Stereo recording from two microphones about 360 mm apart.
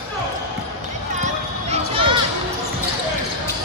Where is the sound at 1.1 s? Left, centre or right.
Centre.